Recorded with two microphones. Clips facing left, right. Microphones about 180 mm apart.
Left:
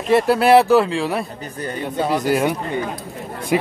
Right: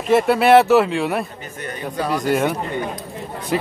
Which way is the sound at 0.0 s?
Centre (ahead or behind).